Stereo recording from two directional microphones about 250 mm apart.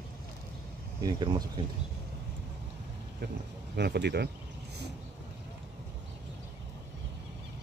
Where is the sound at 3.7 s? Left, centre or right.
Right.